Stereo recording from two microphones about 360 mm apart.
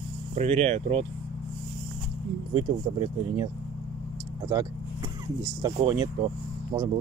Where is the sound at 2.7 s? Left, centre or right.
Centre.